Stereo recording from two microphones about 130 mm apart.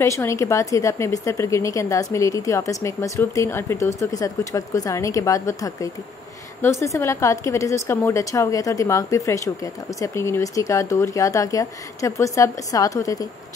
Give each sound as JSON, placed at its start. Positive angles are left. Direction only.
{"t": 0.0, "sound": "speech", "side_deg": 20}